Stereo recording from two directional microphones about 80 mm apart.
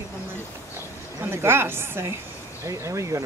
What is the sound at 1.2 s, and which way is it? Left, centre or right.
Speech, right.